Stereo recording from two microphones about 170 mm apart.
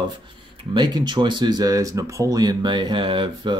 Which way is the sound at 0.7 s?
25° right (ahead or behind).